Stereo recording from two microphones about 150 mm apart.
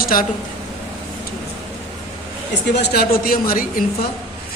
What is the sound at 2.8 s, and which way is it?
A man's voice, 80° left.